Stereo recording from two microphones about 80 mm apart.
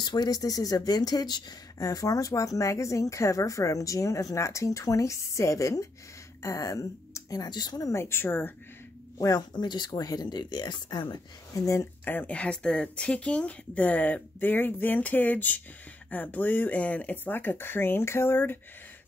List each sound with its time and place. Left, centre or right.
0.0 s speech: left
7.4 s speech: left
7.8 s speech: left
9.2 s speech: left
10.4 s speech: left
11.5 s speech: left
12.0 s speech: left